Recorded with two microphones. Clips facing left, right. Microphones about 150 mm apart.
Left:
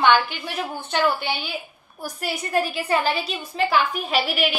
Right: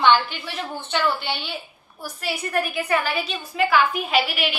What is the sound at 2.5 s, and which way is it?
A woman's voice, 25° left (ahead or behind).